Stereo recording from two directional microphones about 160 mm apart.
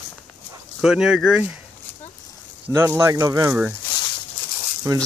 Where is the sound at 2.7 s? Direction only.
15° right (ahead or behind).